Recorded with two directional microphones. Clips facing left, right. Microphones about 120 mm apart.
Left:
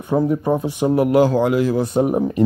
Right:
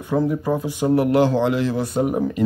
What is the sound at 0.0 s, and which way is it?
Speech, 25° left (ahead or behind).